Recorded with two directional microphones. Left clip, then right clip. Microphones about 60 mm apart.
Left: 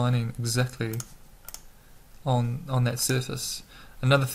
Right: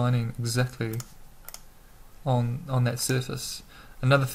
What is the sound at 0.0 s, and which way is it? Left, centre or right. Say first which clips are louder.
Speech: even; centre.